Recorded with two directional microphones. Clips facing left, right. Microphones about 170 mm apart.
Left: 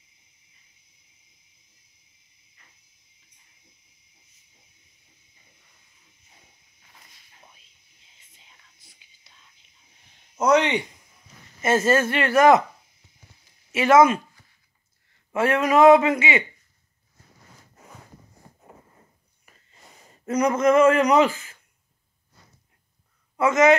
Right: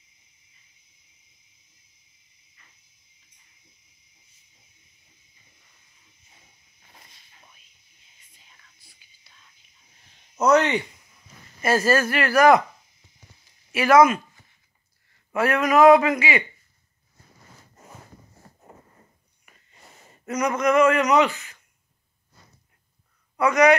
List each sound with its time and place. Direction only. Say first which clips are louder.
9.3 s whispering: even; 20° left (ahead or behind)
10.3 s speech: right 1 dB; 15° left (ahead or behind)
11.6 s speech: left 1 dB; 25° left (ahead or behind)
13.7 s speech: even; 25° left (ahead or behind)
15.3 s speech: even; 25° left (ahead or behind)
20.2 s speech: left 3 dB; 30° left (ahead or behind)
23.3 s speech: even; 25° left (ahead or behind)